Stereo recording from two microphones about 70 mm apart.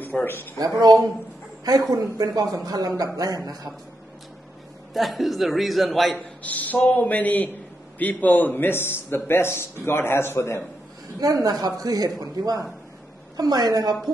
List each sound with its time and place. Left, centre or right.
0.0 s speech: left
0.6 s a woman's voice: right
4.9 s a man's voice: centre
6.4 s a man's voice: left
11.1 s a man's voice: right